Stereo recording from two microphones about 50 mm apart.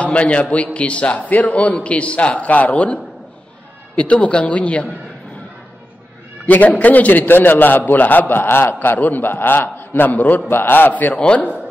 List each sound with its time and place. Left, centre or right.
0.0 s a man's voice: left
6.4 s a man's voice: left
10.9 s a man's voice: left